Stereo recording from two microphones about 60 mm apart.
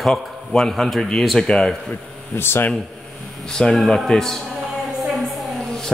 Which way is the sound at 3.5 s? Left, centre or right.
Centre.